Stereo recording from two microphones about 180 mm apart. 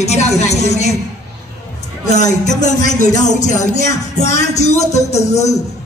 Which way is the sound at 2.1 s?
40° left (ahead or behind).